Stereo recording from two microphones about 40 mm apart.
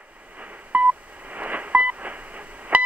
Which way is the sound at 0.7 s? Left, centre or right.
Right.